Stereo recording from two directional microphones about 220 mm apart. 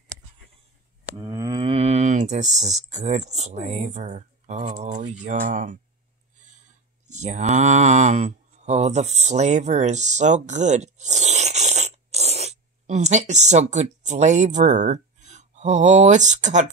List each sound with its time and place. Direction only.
1.1 s cattle: 15° right (ahead or behind); by 5.8 s 35° right (ahead or behind)
7.1 s speech: 35° right (ahead or behind)